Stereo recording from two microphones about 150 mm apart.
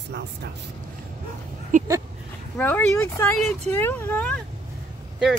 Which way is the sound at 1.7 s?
55° right (ahead or behind).